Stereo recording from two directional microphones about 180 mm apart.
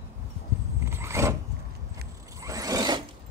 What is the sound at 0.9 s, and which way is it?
Filing, 15° right (ahead or behind).